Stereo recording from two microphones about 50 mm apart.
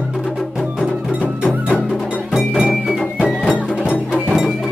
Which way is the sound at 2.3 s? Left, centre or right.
Centre.